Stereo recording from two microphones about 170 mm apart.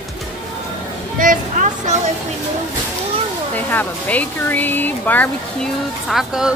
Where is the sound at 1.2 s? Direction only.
50° right (ahead or behind).